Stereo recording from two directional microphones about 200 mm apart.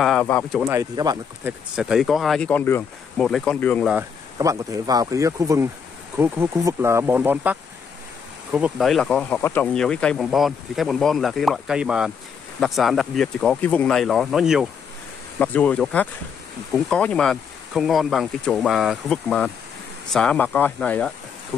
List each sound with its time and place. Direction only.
0.0 s speech: 5° left (ahead or behind)
0.7 s speech: 15° right (ahead or behind)
1.4 s speech: 5° right (ahead or behind)
3.9 s speech: 15° right (ahead or behind)
15.3 s speech: 10° left (ahead or behind)